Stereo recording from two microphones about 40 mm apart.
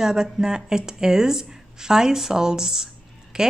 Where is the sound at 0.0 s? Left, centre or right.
Centre.